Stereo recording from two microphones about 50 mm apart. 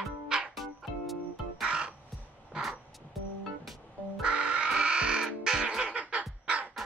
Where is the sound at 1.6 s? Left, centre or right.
Right.